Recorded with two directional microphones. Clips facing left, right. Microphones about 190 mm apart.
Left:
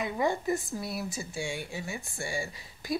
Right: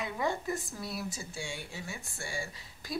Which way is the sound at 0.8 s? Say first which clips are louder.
Left 3 dB; 10° left (ahead or behind).